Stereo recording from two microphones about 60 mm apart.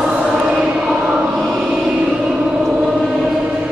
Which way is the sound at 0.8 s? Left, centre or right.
Centre.